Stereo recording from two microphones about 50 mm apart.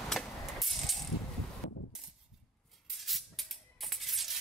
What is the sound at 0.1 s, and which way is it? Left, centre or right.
Mechanisms, centre.